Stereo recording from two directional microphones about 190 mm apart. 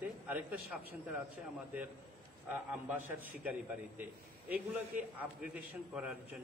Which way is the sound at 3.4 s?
10° right (ahead or behind).